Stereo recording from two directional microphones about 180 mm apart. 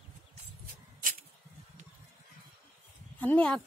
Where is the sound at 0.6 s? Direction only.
55° right (ahead or behind).